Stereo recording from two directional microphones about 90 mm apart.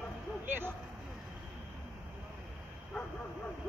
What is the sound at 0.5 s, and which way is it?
Speech, 20° right (ahead or behind).